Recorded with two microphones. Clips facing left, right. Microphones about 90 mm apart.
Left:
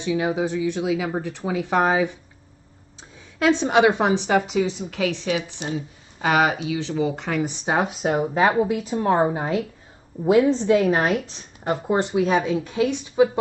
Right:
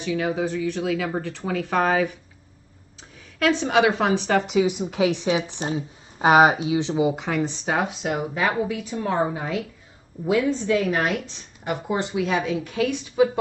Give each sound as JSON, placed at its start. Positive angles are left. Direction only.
{"t": 0.0, "sound": "speech", "side_deg": 20}
{"t": 3.3, "sound": "a woman's voice", "side_deg": 20}
{"t": 4.4, "sound": "speech", "side_deg": 0}
{"t": 4.6, "sound": "a woman's voice", "side_deg": -20}
{"t": 7.1, "sound": "speech", "side_deg": 0}
{"t": 7.4, "sound": "a woman's voice", "side_deg": 20}